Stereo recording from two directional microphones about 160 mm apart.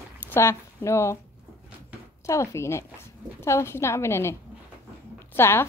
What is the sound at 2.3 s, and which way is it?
A woman's voice, 15° left (ahead or behind).